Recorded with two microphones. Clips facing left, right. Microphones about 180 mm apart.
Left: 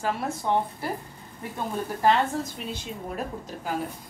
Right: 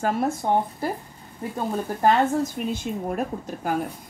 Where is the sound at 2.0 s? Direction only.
50° right (ahead or behind).